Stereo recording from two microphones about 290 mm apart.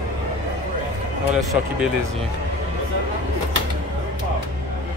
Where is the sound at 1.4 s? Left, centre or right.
Centre.